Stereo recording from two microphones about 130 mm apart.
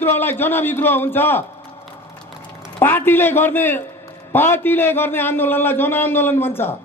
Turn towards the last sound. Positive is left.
turn(degrees=15)  # may be behind; listen again after turning